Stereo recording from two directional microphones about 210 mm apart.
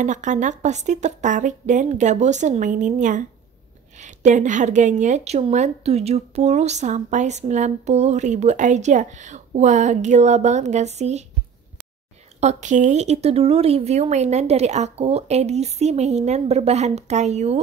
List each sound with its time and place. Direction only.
0.0 s a woman's voice: 35° right (ahead or behind)
12.4 s a woman's voice: 35° right (ahead or behind)